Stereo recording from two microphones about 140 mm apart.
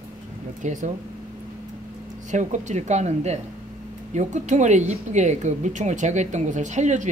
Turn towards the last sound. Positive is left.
turn(degrees=-60)  # may be behind; listen again after turning